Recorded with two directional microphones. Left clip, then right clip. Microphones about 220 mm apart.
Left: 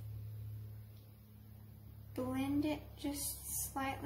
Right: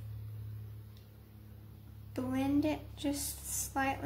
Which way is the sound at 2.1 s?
30° right (ahead or behind).